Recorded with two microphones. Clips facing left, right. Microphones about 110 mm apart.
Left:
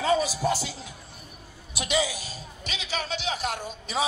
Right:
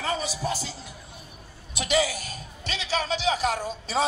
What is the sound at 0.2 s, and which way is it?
Speech, 90° left.